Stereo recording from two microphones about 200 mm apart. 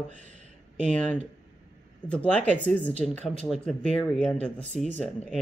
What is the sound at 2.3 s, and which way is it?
Speech, 5° left (ahead or behind).